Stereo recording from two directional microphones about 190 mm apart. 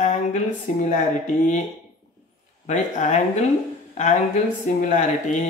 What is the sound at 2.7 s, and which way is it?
Mantra, 40° left (ahead or behind).